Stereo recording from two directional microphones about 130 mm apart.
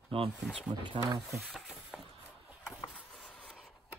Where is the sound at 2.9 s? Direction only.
5° left (ahead or behind).